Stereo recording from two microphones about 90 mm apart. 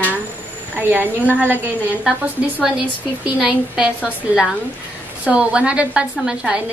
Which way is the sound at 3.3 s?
10° right (ahead or behind).